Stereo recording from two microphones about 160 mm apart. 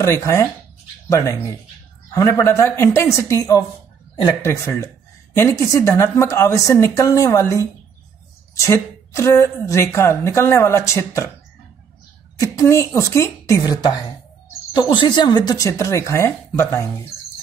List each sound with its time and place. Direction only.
0.0 s a woman's voice: 15° left (ahead or behind)
12.4 s speech: 20° left (ahead or behind)